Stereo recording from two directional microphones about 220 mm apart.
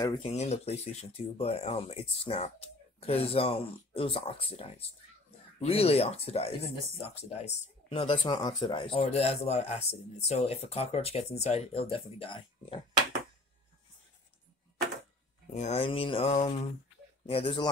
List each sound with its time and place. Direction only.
0.0 s speech: 20° left (ahead or behind)
15.5 s speech: 30° left (ahead or behind)